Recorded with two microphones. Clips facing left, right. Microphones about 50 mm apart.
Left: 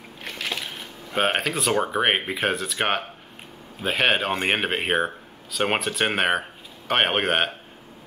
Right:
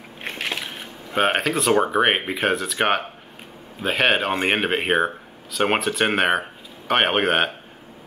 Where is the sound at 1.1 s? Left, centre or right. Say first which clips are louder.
Right 3 dB; centre.